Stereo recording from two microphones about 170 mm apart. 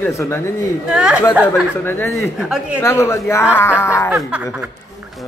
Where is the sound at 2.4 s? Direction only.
5° right (ahead or behind).